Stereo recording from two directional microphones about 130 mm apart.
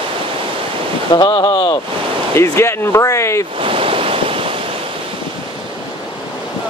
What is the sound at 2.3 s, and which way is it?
Speech, 20° left (ahead or behind).